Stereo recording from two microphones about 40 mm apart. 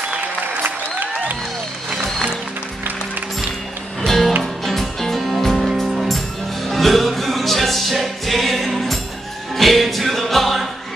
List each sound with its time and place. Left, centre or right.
0.7 s applause: right
4.0 s music: centre